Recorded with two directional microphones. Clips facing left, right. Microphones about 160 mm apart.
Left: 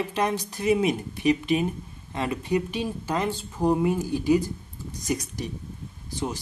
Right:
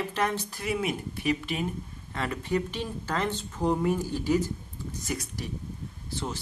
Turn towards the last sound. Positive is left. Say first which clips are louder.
# left 4 dB
turn(degrees=15)  # may be behind; listen again after turning